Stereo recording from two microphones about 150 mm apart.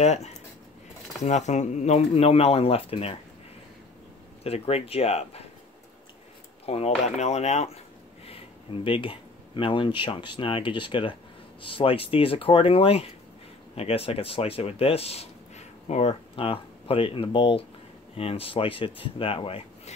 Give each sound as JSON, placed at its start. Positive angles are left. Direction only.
{"t": 0.0, "sound": "speech", "side_deg": 45}
{"t": 4.4, "sound": "speech", "side_deg": 40}
{"t": 6.6, "sound": "speech", "side_deg": 45}
{"t": 8.8, "sound": "speech", "side_deg": 35}